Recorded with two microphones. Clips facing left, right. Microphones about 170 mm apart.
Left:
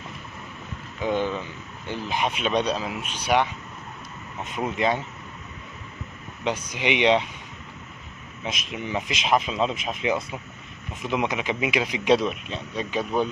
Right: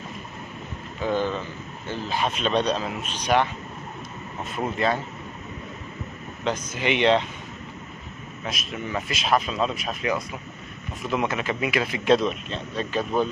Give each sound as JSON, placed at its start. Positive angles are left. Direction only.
{"t": 1.0, "sound": "a sound", "side_deg": 15}
{"t": 2.0, "sound": "speech", "side_deg": 15}
{"t": 4.5, "sound": "speech", "side_deg": 15}
{"t": 6.4, "sound": "speech", "side_deg": 10}
{"t": 8.5, "sound": "speech", "side_deg": 20}